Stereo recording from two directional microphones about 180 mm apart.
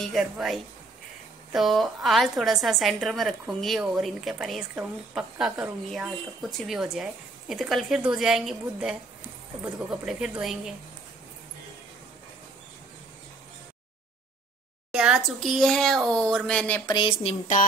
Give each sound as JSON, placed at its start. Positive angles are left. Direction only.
{"t": 0.0, "sound": "a woman's voice", "side_deg": 0}
{"t": 10.0, "sound": "a woman's voice", "side_deg": -5}
{"t": 14.9, "sound": "a woman's voice", "side_deg": -5}
{"t": 16.8, "sound": "speech", "side_deg": 25}